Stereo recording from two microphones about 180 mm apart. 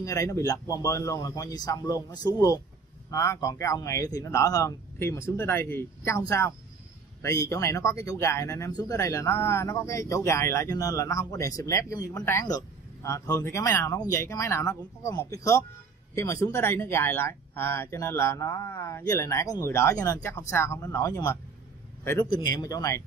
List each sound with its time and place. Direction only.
0.0 s speech: 20° left (ahead or behind)